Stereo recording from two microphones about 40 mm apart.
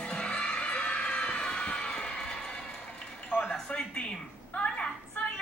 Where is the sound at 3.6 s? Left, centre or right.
Left.